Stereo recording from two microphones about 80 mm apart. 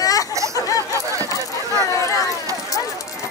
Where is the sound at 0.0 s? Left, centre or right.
Left.